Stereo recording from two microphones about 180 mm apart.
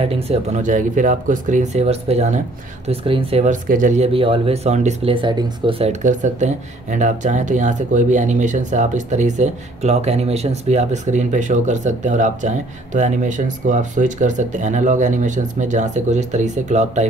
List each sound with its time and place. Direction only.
0.1 s speech: 40° right (ahead or behind)
3.6 s speech: 45° right (ahead or behind)